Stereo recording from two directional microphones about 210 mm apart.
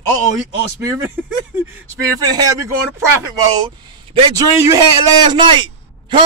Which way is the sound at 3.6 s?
25° right (ahead or behind).